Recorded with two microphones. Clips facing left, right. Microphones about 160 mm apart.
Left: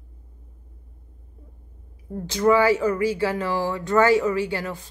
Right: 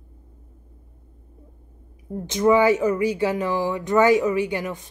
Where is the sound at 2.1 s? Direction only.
20° right (ahead or behind).